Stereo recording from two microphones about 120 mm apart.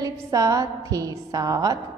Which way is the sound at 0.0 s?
30° right (ahead or behind).